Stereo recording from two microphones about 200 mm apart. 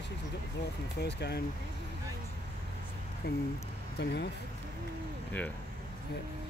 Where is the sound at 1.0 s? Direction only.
55° left (ahead or behind).